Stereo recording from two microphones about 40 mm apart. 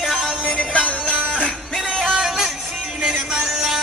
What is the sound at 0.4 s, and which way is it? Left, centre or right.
Music, left.